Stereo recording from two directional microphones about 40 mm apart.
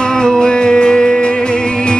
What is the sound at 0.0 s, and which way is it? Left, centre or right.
Music, centre.